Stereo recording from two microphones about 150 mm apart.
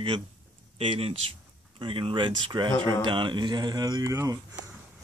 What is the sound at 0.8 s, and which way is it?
Speech, 40° right (ahead or behind).